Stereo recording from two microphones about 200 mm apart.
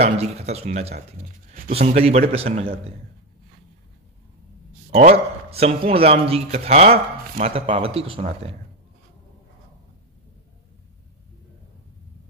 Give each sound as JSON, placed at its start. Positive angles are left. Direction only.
{"t": 0.0, "sound": "speech", "side_deg": -30}
{"t": 2.0, "sound": "speech", "side_deg": -30}
{"t": 4.9, "sound": "speech", "side_deg": -30}